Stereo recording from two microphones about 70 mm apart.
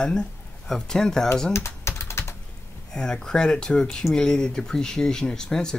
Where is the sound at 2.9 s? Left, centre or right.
Centre.